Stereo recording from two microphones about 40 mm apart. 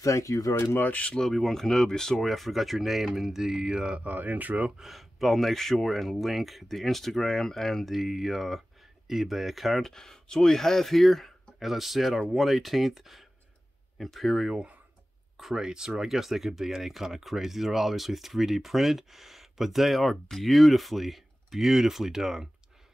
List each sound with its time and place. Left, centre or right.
1.3 s speech: centre
2.2 s speech: centre; by 4.0 s right
4.0 s speech: right
4.8 s speech: centre
7.8 s speech: centre
9.8 s speech: centre
15.5 s speech: centre